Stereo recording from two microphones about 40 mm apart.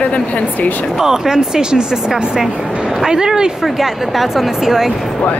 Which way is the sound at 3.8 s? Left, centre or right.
Centre.